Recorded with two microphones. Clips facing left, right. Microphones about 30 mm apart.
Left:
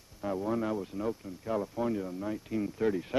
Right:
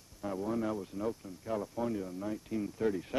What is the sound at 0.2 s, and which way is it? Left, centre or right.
Speech, centre.